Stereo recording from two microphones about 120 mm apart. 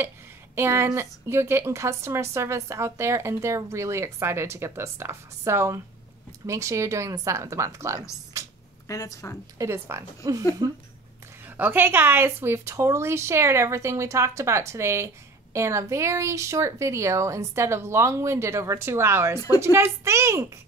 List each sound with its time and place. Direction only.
0.6 s speech: 20° right (ahead or behind)
8.3 s a sound: 25° right (ahead or behind)
8.8 s speech: 30° left (ahead or behind)
9.6 s speech: 20° right (ahead or behind)
10.6 s speech: 35° right (ahead or behind)
11.4 s speech: 15° right (ahead or behind)